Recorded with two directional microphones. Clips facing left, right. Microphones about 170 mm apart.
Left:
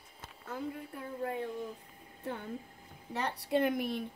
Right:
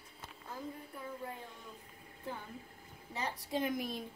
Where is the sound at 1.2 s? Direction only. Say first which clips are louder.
Left 9 dB; 70° left (ahead or behind).